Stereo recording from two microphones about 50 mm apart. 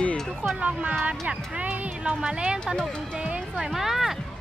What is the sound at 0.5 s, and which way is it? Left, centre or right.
Speech, right.